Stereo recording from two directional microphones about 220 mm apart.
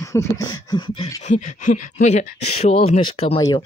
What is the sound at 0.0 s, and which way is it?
Speech, 15° left (ahead or behind).